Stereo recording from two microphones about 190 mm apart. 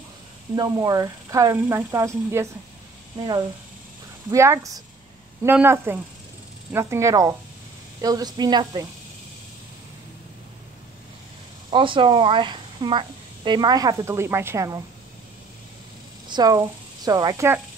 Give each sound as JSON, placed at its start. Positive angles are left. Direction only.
{"t": 0.6, "sound": "a woman's voice", "side_deg": -20}
{"t": 11.7, "sound": "a woman's voice", "side_deg": -25}
{"t": 16.3, "sound": "a woman's voice", "side_deg": -20}